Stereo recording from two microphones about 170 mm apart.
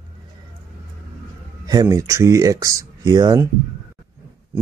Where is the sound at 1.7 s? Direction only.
20° right (ahead or behind).